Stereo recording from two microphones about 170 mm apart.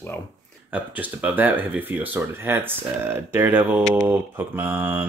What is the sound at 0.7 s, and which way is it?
Speech, 10° right (ahead or behind).